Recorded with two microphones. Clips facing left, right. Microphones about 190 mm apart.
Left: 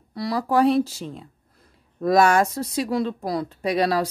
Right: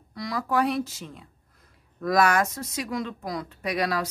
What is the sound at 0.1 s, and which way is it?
Speech, 35° left (ahead or behind).